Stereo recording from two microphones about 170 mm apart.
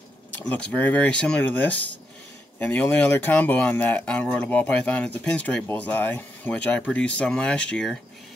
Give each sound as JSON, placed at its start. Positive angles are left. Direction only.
{"t": 0.5, "sound": "speech", "side_deg": 10}